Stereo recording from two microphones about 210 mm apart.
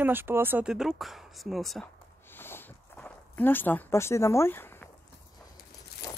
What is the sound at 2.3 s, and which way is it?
Walk, 10° left (ahead or behind).